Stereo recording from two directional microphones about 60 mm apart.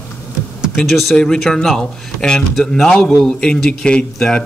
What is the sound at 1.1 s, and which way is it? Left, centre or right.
Speech, centre.